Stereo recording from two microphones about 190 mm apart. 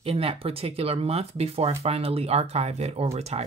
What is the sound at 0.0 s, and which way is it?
Speech, 30° right (ahead or behind).